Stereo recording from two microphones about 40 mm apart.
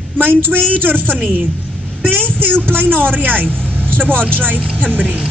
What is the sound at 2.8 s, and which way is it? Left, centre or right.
Speech, right.